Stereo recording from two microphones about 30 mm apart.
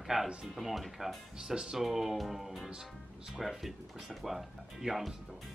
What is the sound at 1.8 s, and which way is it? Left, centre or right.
Speech, centre.